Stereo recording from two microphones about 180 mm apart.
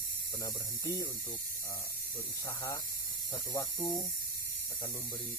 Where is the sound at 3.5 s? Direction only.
20° left (ahead or behind).